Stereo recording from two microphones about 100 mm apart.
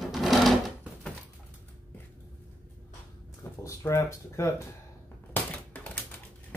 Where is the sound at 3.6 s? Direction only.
30° left (ahead or behind).